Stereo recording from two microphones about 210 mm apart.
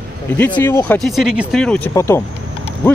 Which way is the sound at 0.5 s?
10° left (ahead or behind).